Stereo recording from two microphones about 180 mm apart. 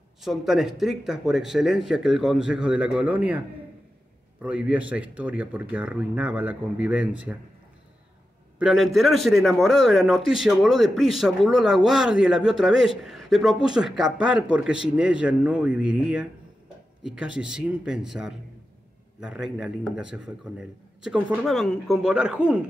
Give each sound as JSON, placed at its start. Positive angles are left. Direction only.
{"t": 0.2, "sound": "a man's voice", "side_deg": 0}
{"t": 8.5, "sound": "a man's voice", "side_deg": 0}